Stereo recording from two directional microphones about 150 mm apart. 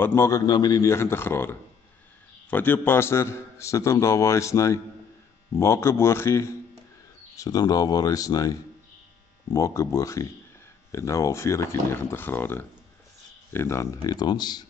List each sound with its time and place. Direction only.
0.0 s a man's voice: 15° left (ahead or behind)